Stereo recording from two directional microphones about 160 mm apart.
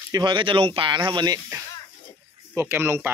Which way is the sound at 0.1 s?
30° right (ahead or behind).